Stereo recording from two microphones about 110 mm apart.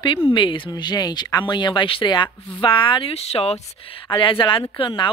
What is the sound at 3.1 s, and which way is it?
Speech, 70° left (ahead or behind).